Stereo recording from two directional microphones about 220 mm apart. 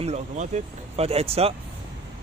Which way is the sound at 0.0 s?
30° right (ahead or behind).